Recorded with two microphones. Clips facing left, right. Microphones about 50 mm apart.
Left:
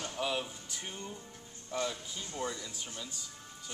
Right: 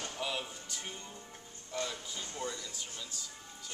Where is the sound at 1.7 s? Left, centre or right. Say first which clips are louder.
Left 2 dB; centre.